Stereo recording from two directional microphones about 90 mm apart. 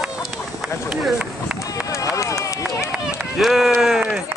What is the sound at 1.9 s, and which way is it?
Run, 35° left (ahead or behind).